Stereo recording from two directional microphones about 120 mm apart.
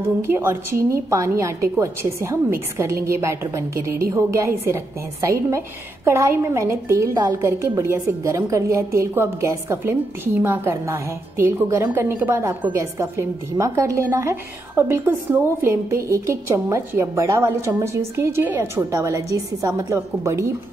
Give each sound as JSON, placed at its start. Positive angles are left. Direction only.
{"t": 0.2, "sound": "a woman's voice", "side_deg": -20}